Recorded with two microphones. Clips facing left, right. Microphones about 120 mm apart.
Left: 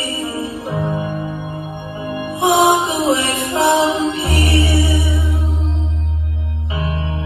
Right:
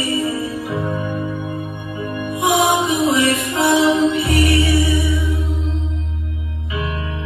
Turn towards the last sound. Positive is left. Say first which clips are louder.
# left 1 dB
turn(degrees=30)  # may be behind; listen again after turning